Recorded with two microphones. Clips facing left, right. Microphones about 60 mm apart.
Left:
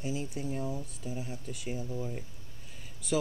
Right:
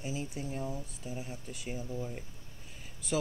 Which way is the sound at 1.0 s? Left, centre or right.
Centre.